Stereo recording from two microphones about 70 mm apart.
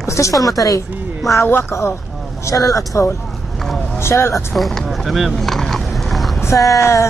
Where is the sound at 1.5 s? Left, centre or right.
Left.